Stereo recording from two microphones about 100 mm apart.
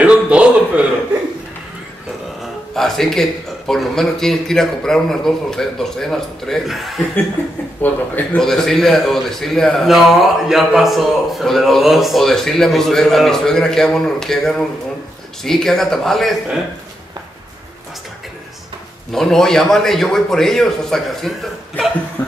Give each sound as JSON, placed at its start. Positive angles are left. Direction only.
{"t": 0.0, "sound": "a sound", "side_deg": -10}
{"t": 2.7, "sound": "a man's voice", "side_deg": 5}
{"t": 7.8, "sound": "speech", "side_deg": 15}
{"t": 8.4, "sound": "a man's voice", "side_deg": 5}
{"t": 19.1, "sound": "a man's voice", "side_deg": 5}